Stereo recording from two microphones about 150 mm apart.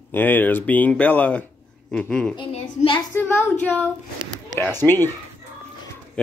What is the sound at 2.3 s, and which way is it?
Speech, 35° left (ahead or behind).